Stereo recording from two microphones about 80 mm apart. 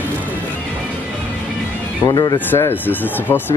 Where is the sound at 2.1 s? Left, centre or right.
Left.